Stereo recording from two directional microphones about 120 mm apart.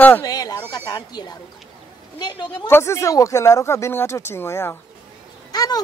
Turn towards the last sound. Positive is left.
turn(degrees=35)  # may be behind; listen again after turning